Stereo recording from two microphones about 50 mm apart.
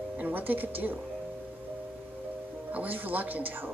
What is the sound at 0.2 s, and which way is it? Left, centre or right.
Speech, right.